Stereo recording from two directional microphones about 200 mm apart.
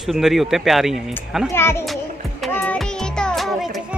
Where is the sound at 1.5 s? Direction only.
10° left (ahead or behind).